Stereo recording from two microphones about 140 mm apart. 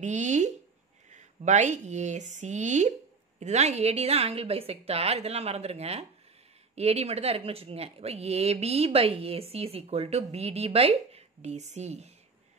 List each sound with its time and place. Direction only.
0.0 s speech: 55° right (ahead or behind)